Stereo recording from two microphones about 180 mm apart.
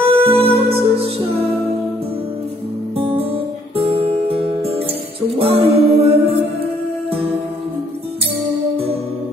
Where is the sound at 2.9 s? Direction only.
30° right (ahead or behind).